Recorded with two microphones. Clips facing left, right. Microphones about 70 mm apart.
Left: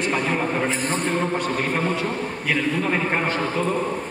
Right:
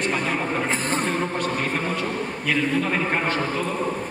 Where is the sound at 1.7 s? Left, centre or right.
Centre.